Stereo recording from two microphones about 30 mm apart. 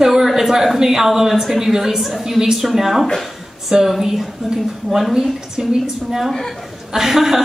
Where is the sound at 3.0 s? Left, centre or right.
Centre.